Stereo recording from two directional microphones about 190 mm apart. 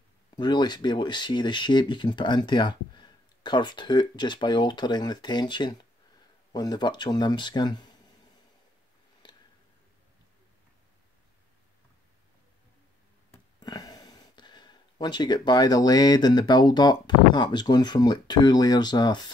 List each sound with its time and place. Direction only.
0.4 s speech: 25° left (ahead or behind)
13.3 s speech: 20° left (ahead or behind)